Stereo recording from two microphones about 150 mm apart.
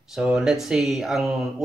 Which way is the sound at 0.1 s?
5° right (ahead or behind).